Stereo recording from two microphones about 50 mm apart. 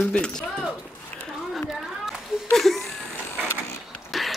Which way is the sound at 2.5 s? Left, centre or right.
Centre.